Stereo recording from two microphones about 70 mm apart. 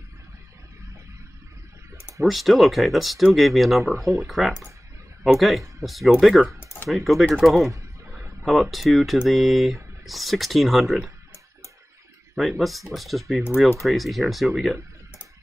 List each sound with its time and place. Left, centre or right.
2.2 s speech: centre
6.6 s typing: left
6.9 s speech: centre
12.4 s speech: centre